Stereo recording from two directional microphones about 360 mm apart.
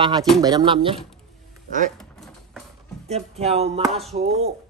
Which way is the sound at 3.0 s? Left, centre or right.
Centre.